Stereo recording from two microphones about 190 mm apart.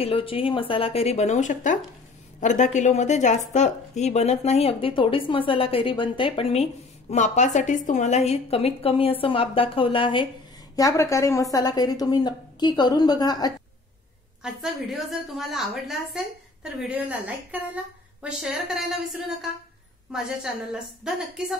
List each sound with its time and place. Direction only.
0.0 s a woman's voice: 30° left (ahead or behind)
14.4 s a woman's voice: centre (ahead or behind)
18.2 s a woman's voice: 5° right (ahead or behind)